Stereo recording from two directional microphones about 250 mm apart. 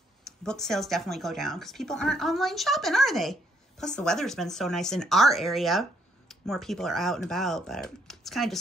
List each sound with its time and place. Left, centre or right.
0.2 s speech: centre